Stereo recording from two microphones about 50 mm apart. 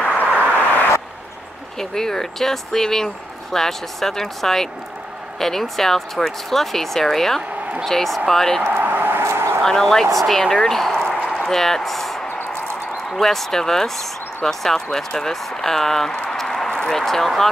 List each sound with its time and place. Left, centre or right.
0.2 s vehicle: left
1.8 s speech: centre
8.6 s a sound: right
9.2 s vehicle: right
9.6 s speech: centre
16.2 s a sound: centre